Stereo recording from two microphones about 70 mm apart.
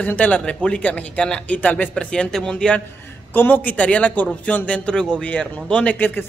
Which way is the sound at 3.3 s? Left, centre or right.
Left.